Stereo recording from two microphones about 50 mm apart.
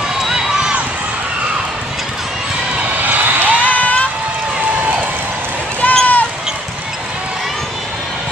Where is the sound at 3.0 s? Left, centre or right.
Right.